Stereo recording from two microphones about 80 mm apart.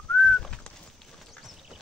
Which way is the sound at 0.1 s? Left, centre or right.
Centre.